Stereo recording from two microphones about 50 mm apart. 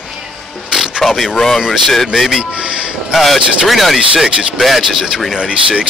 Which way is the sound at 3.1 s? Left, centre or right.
Centre.